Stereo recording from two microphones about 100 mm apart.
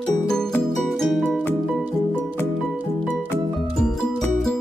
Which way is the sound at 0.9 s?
Centre (ahead or behind).